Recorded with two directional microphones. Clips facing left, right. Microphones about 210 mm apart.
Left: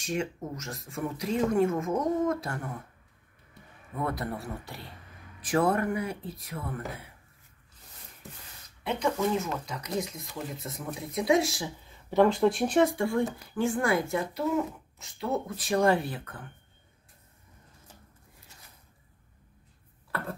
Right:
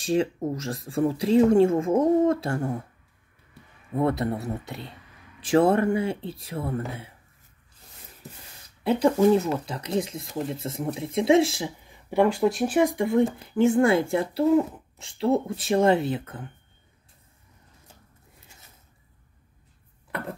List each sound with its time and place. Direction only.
0.0 s speech: 30° right (ahead or behind)
3.9 s speech: 25° right (ahead or behind)
8.8 s speech: 35° right (ahead or behind); by 12.8 s 5° right (ahead or behind)
12.8 s speech: 20° right (ahead or behind)
20.1 s a sound: 20° right (ahead or behind)